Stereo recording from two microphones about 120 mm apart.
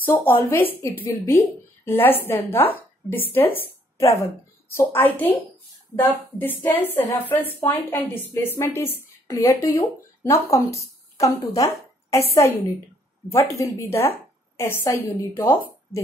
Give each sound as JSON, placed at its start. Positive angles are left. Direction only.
{"t": 0.0, "sound": "a woman's voice", "side_deg": 15}
{"t": 6.3, "sound": "a woman's voice", "side_deg": 15}